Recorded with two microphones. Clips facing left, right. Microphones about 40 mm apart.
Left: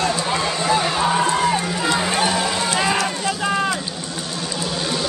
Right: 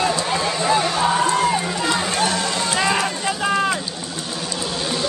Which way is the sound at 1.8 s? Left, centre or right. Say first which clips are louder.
Left 1 dB; centre.